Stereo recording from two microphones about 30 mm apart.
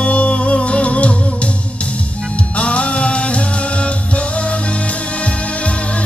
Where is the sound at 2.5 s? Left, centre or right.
Left.